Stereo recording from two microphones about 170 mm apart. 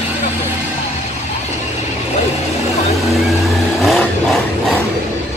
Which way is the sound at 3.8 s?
Centre (ahead or behind).